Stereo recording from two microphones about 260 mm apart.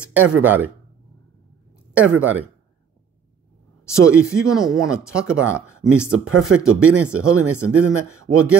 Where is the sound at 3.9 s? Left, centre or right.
Centre.